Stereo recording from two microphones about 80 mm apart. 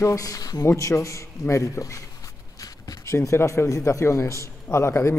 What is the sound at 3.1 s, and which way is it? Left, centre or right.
A man's voice, left.